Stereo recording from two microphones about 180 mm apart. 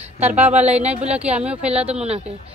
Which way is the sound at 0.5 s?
35° right (ahead or behind).